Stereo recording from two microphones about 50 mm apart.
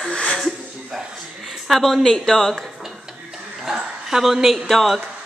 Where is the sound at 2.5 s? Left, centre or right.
Centre.